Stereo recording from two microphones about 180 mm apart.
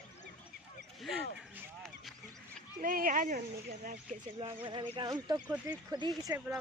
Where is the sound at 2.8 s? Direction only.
50° right (ahead or behind).